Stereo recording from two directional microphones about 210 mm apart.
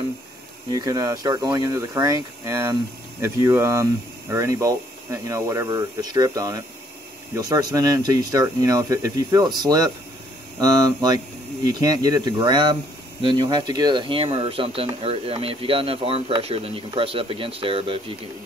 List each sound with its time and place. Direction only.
0.7 s speech: 15° right (ahead or behind)